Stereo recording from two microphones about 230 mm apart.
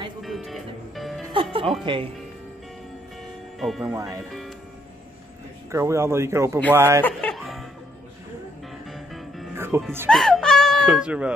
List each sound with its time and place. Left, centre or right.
0.2 s music: centre
1.3 s music: right
3.5 s speech: centre
3.8 s speech: centre
5.7 s speech: centre
7.0 s music: centre
8.9 s music: centre
9.6 s music: centre
10.0 s speech: centre